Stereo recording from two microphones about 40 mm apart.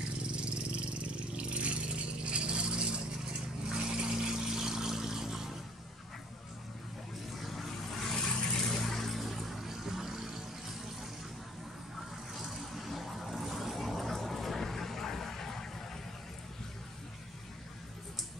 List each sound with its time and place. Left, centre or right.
0.4 s vehicle: right; by 5.5 s centre
7.3 s vehicle: centre
12.4 s vehicle: centre